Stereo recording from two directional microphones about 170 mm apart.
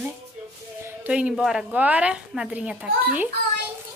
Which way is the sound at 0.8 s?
10° right (ahead or behind).